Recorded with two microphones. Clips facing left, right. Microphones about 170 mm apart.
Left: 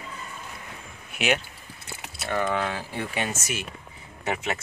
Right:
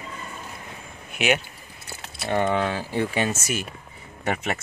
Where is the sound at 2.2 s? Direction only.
30° right (ahead or behind).